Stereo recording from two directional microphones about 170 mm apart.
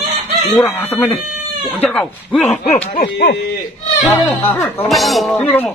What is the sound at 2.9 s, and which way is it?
Speech, 65° left (ahead or behind).